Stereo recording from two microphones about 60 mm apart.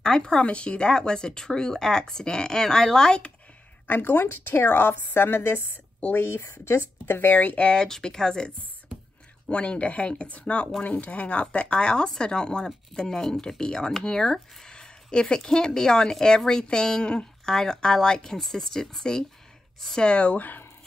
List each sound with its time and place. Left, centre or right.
0.0 s speech: centre
3.8 s a woman's voice: left
7.2 s speech: left; by 8.5 s centre
9.5 s speech: left